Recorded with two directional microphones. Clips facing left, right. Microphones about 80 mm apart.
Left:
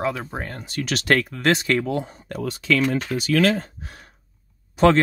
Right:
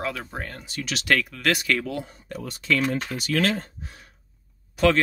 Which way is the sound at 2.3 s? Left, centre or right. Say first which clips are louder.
Left 3 dB; left.